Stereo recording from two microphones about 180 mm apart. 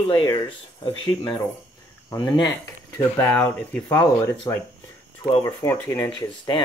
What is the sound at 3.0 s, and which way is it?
Speech, 10° left (ahead or behind).